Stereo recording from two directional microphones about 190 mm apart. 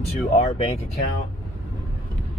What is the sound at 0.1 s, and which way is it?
Speech, 35° left (ahead or behind).